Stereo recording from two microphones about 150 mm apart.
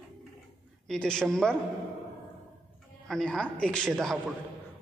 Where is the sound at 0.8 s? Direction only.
5° left (ahead or behind).